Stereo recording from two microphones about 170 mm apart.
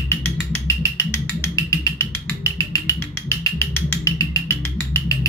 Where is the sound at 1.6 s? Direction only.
15° left (ahead or behind).